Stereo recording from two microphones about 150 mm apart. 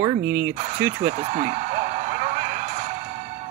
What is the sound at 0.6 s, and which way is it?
Speech, 45° right (ahead or behind).